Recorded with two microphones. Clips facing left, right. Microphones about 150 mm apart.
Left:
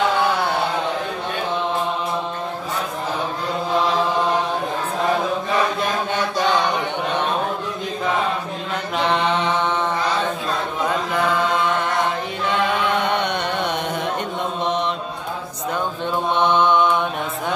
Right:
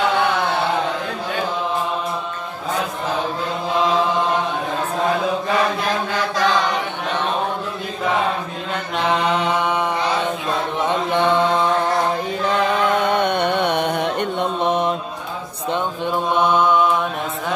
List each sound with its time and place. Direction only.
6.1 s chant: 90° right
8.9 s mantra: centre (ahead or behind)
10.9 s mantra: 25° right (ahead or behind)
13.1 s music: 50° right (ahead or behind)
14.7 s mantra: 50° right (ahead or behind)
16.3 s mantra: 5° right (ahead or behind)